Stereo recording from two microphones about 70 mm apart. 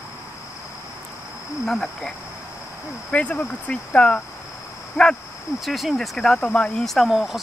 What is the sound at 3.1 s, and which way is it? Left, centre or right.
Speech, centre.